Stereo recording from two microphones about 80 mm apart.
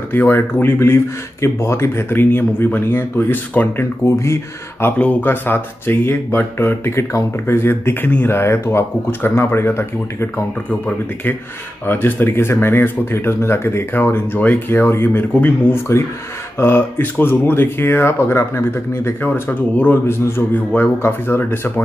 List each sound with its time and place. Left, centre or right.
0.1 s speech: left
4.9 s speech: centre
11.8 s speech: left